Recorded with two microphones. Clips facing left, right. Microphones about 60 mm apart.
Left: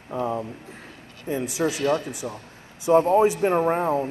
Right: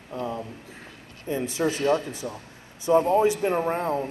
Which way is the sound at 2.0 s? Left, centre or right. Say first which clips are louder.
Left 1 dB; centre.